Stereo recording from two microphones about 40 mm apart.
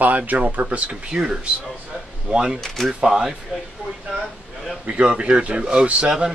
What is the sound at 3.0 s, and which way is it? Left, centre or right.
Speech, centre.